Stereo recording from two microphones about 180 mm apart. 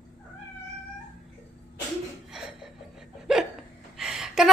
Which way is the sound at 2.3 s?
5° right (ahead or behind).